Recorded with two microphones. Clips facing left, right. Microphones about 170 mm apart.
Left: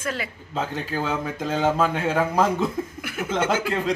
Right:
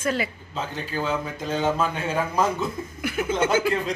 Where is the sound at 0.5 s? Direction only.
90° left.